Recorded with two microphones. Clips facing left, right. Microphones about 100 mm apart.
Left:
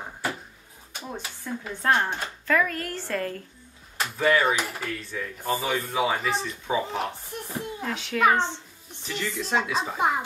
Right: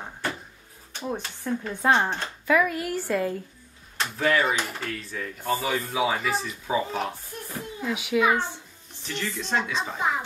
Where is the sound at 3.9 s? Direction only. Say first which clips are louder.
Left 1 dB; 5° left (ahead or behind).